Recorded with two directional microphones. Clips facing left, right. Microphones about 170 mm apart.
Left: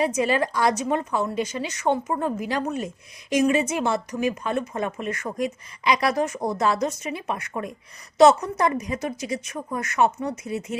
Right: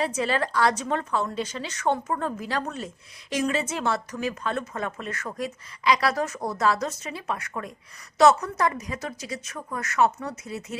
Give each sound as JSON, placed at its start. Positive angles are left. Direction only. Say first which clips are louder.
{"t": 0.0, "sound": "a woman's voice", "louder": "left 4 dB", "side_deg": 15}